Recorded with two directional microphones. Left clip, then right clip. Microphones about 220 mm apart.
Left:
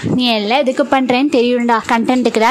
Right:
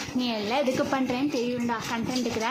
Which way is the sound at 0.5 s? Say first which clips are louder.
Left 10 dB; 40° left (ahead or behind).